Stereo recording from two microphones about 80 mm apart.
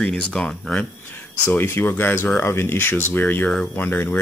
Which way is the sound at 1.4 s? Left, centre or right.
Left.